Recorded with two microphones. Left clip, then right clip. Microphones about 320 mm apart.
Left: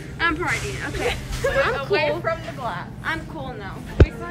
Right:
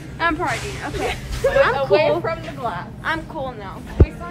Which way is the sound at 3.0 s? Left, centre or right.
Centre.